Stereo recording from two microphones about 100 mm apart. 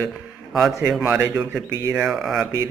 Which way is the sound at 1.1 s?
25° right (ahead or behind).